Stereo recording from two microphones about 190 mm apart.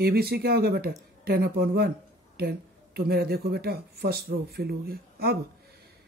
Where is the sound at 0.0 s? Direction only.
55° right (ahead or behind).